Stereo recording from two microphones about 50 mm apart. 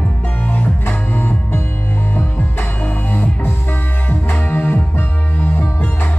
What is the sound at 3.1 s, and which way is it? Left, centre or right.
Music, left.